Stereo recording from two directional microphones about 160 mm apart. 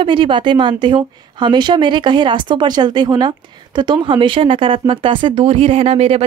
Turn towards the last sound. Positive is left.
turn(degrees=-40)  # may be behind; listen again after turning